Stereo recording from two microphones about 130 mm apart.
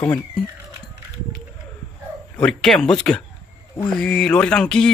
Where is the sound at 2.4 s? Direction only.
5° left (ahead or behind).